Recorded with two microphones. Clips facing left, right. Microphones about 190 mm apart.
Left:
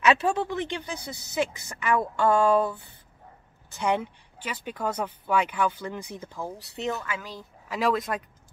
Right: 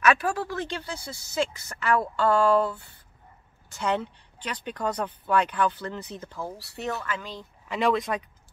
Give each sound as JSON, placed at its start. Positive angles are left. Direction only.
{"t": 0.0, "sound": "speech", "side_deg": 20}